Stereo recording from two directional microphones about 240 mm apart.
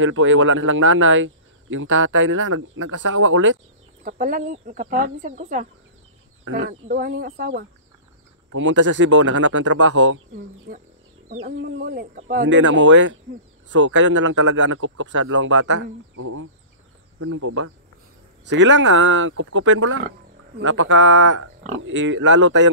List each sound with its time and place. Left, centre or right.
0.0 s speech: right
4.0 s speech: right
6.7 s speech: right
8.5 s speech: right
11.2 s speech: right
12.4 s speech: right
18.5 s speech: right